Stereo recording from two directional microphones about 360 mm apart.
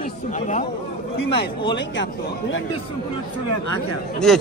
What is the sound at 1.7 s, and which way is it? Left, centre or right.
Speech, left.